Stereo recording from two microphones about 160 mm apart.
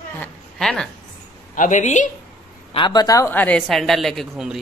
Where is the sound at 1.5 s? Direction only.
50° left (ahead or behind).